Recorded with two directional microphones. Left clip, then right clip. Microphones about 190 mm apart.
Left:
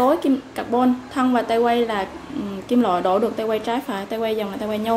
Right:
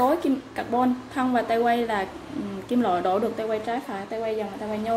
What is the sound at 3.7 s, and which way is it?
Speech, 25° left (ahead or behind).